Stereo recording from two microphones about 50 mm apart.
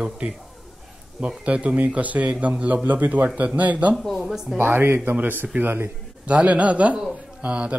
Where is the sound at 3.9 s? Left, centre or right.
Centre.